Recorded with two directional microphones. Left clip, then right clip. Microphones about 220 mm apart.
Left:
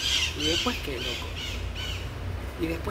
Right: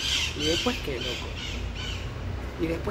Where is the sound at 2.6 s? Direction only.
10° left (ahead or behind).